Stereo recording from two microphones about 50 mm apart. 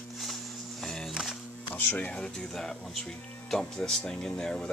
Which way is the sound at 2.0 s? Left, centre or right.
Centre.